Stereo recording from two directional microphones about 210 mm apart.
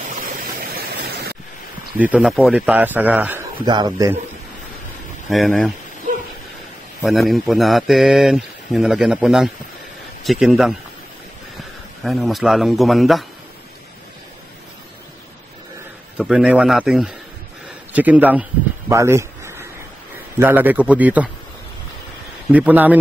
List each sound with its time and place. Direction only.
0.3 s a sound: 45° right (ahead or behind)
2.0 s a man's voice: 5° right (ahead or behind)
3.6 s a man's voice: 20° right (ahead or behind)
5.3 s speech: centre (ahead or behind)
7.0 s speech: centre (ahead or behind)
12.0 s speech: centre (ahead or behind)
16.2 s a man's voice: 5° right (ahead or behind)
22.5 s a man's voice: 10° right (ahead or behind)